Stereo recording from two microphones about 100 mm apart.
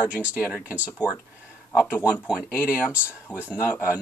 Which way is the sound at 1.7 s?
20° left (ahead or behind).